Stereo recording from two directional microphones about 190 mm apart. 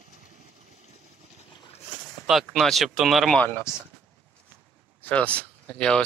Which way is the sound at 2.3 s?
Centre (ahead or behind).